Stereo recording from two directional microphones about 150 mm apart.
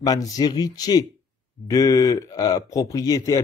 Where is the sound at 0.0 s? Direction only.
25° left (ahead or behind).